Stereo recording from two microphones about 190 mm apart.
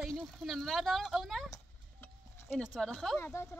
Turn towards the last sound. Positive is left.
turn(degrees=10)  # may be behind; listen again after turning